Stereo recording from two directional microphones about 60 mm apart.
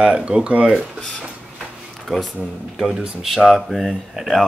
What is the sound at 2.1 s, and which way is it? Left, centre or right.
Speech, centre.